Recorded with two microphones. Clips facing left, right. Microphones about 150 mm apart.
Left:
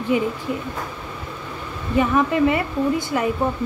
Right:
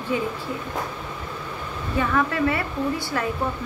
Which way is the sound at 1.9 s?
20° left (ahead or behind).